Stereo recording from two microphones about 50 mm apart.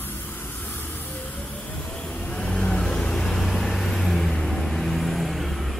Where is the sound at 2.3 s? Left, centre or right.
Left.